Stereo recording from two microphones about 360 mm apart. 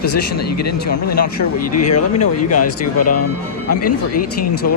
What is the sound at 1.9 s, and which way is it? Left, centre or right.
Speech, left.